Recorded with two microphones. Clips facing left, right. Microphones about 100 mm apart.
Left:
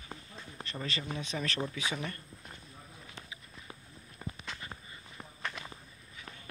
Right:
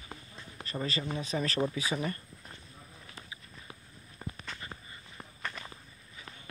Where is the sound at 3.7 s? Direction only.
Centre (ahead or behind).